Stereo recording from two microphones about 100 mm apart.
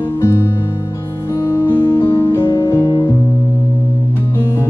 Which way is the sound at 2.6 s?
40° left (ahead or behind).